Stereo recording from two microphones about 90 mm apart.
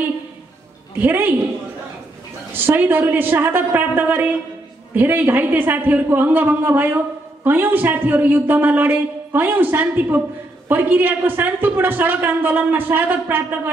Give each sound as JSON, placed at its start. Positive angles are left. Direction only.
{"t": 0.9, "sound": "a woman's voice", "side_deg": -20}
{"t": 2.5, "sound": "a woman's voice", "side_deg": -25}